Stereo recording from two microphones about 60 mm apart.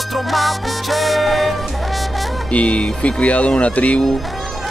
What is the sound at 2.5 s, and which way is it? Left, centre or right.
Speech, centre.